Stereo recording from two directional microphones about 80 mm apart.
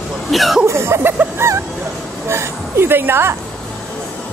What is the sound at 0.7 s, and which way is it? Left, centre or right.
Speech, right.